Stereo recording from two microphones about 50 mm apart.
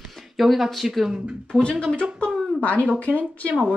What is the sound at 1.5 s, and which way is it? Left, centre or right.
Speech, centre.